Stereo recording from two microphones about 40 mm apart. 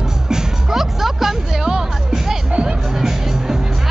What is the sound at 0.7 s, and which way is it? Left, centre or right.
Music, centre.